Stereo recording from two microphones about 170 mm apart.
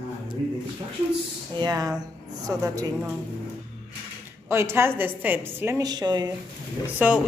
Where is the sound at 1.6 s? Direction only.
20° right (ahead or behind).